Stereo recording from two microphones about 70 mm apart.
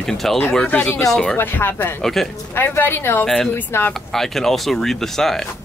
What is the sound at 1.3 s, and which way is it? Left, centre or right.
Speech, left.